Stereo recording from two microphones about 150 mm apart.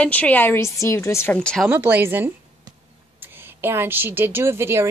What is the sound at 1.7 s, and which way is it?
Speech, 15° right (ahead or behind).